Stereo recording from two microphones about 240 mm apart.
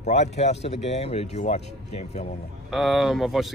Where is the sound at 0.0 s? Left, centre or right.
Left.